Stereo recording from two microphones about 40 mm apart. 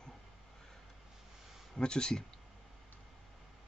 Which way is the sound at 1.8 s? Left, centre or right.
Left.